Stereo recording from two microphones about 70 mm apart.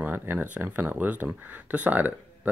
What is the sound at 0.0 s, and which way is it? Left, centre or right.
Speech, right.